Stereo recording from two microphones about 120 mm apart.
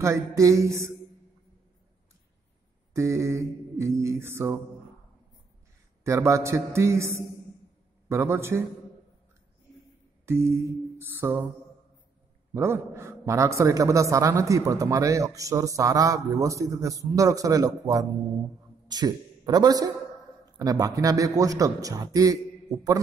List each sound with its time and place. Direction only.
0.0 s a man's voice: 25° right (ahead or behind)
2.9 s a man's voice: 25° right (ahead or behind)
6.0 s a man's voice: 25° right (ahead or behind)
10.2 s a sound: 20° right (ahead or behind)
12.5 s a man's voice: 20° right (ahead or behind)